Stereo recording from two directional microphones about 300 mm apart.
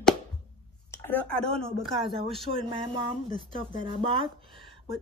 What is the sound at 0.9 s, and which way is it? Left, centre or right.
Speech, centre.